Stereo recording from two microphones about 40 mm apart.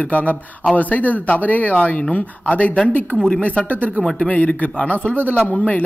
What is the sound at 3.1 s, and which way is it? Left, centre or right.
A woman's voice, centre.